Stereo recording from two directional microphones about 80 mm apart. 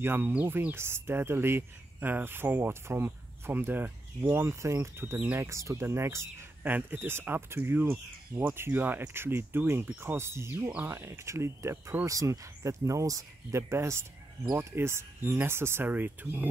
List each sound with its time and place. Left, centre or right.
0.0 s speech: right
12.1 s speech: right